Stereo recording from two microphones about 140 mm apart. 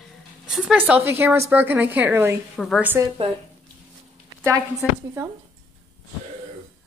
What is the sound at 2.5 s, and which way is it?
Speech, centre (ahead or behind).